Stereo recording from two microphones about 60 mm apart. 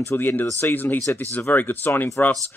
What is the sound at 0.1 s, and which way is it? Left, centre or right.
A man's voice, left.